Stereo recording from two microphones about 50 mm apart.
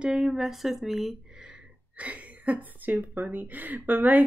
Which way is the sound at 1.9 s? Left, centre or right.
Right.